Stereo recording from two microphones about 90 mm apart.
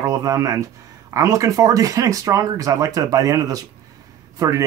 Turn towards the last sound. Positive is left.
turn(degrees=-35)  # may be behind; listen again after turning